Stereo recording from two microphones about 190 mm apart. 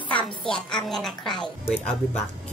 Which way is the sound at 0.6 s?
5° left (ahead or behind).